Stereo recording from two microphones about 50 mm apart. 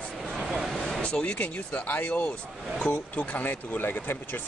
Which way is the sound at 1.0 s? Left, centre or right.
Left.